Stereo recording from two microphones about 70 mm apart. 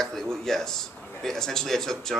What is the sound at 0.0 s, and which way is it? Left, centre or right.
Speech, centre.